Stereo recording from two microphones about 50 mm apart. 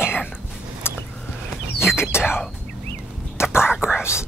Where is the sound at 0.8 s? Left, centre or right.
Left.